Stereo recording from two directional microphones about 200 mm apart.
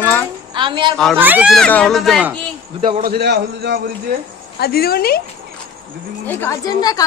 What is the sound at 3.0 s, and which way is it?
Speech, 55° right (ahead or behind).